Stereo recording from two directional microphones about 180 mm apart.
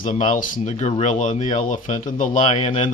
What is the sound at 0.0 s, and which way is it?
Speech, 45° left (ahead or behind).